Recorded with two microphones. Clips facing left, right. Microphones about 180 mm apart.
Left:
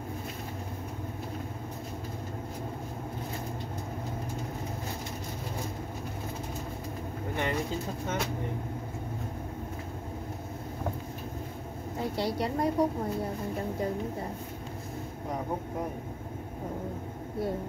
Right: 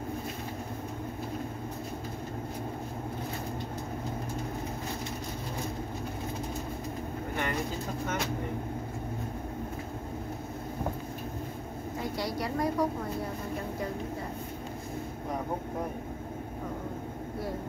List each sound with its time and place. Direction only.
12.0 s a woman's voice: 30° left (ahead or behind)